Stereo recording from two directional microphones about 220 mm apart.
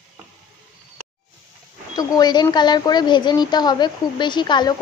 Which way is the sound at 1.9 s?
20° left (ahead or behind).